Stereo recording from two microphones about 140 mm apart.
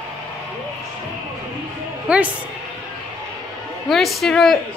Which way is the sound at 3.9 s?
Centre (ahead or behind).